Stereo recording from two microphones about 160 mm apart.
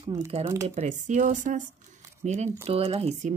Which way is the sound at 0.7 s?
45° right (ahead or behind).